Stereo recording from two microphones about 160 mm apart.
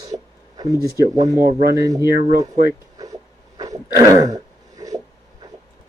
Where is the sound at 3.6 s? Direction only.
20° right (ahead or behind).